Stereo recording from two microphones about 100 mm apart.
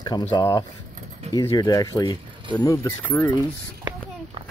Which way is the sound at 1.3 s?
35° left (ahead or behind).